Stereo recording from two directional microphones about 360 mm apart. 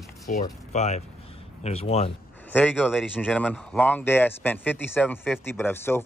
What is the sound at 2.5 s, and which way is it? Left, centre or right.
Speech, centre.